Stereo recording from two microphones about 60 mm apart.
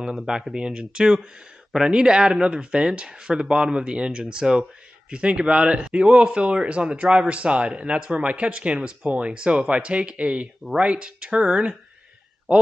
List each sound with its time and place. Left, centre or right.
0.0 s speech: centre